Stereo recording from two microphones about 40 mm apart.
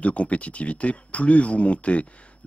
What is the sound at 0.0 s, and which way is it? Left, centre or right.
Speech, left.